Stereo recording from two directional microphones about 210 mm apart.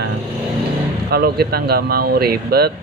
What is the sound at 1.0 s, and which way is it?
Speech, 50° right (ahead or behind).